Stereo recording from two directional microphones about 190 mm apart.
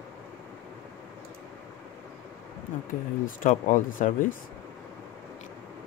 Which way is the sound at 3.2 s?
45° left (ahead or behind).